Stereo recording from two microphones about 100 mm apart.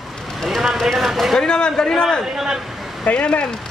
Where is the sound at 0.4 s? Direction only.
Centre (ahead or behind).